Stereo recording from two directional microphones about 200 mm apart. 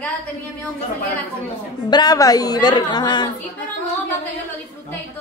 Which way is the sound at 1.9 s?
20° left (ahead or behind).